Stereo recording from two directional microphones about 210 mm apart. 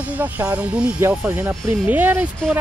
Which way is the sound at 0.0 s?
5° right (ahead or behind).